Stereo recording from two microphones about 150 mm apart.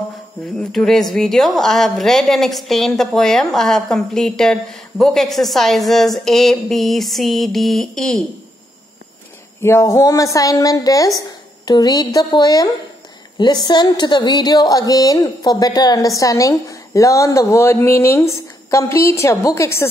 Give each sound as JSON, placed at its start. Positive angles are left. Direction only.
{"t": 0.6, "sound": "a woman's voice", "side_deg": 5}
{"t": 9.6, "sound": "a woman's voice", "side_deg": 15}